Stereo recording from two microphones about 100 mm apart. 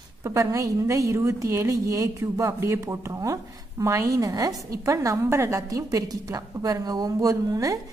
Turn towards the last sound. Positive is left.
turn(degrees=-35)  # may be behind; listen again after turning